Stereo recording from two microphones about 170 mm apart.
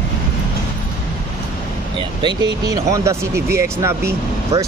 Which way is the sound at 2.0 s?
25° right (ahead or behind).